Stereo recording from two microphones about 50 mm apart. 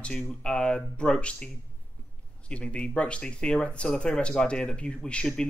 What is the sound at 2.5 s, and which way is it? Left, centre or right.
Speech, left.